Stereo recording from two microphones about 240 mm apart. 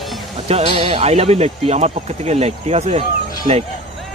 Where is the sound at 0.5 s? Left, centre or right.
Right.